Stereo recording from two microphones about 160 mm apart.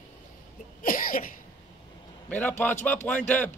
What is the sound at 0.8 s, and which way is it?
Cough, 60° left (ahead or behind).